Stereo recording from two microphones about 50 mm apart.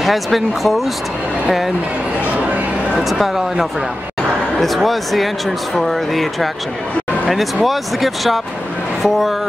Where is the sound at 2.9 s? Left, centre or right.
Centre.